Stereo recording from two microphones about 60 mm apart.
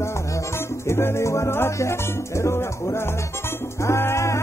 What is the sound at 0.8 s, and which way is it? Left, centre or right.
Music, left.